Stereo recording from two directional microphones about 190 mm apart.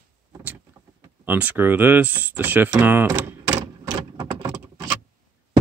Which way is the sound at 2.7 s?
10° right (ahead or behind).